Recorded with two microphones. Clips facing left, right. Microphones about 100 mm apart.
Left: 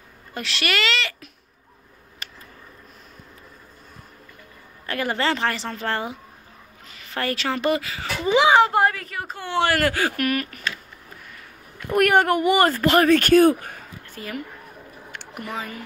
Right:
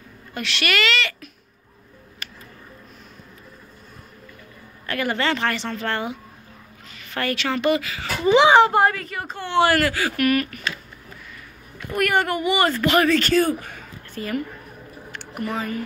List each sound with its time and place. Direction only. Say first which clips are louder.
0.3 s a woman's voice: right 1 dB; 30° left (ahead or behind)
4.8 s a woman's voice: even; 25° left (ahead or behind)
7.2 s a woman's voice: right 1 dB; 30° left (ahead or behind)
8.4 s speech: right 2 dB; centre (ahead or behind)
9.8 s speech: left 1 dB; 50° left (ahead or behind)
10.1 s a woman's voice: right 4 dB; 25° left (ahead or behind)
11.9 s speech: left 4 dB; 55° left (ahead or behind); by 13.1 s 35° left (ahead or behind)
13.1 s speech: left 4 dB; 55° left (ahead or behind)
14.1 s a woman's voice: right 6 dB; 5° left (ahead or behind)
15.0 s a sound: right 5 dB; 15° left (ahead or behind)